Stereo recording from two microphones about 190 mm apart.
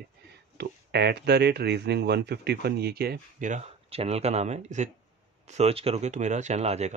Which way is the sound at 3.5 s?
35° right (ahead or behind).